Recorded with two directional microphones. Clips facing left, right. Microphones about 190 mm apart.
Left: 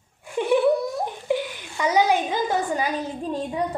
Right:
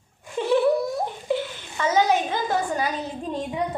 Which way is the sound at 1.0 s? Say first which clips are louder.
Left 1 dB; 15° left (ahead or behind).